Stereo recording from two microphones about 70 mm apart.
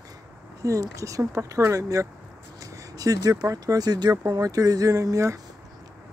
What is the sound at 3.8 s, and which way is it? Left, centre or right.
Speech, right.